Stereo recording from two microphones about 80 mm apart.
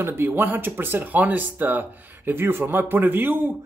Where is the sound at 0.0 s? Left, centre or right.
Right.